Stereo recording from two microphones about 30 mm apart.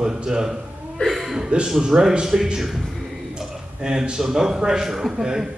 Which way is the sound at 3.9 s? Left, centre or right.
Centre.